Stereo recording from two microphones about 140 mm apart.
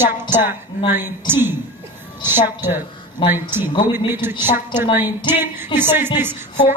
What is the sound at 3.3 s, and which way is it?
A woman's voice, 15° right (ahead or behind).